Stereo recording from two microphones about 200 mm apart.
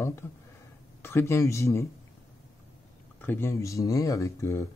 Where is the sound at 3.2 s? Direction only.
10° left (ahead or behind).